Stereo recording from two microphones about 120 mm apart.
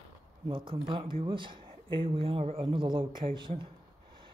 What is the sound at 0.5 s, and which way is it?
Speech, 45° right (ahead or behind).